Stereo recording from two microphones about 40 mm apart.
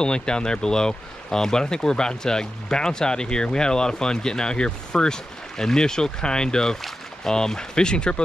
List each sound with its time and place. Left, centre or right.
0.0 s speech: left